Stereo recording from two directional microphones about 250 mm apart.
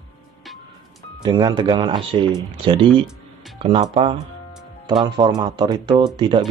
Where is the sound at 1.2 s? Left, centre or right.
Centre.